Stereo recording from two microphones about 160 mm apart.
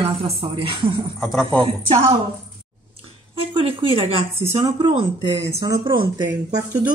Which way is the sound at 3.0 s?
35° right (ahead or behind).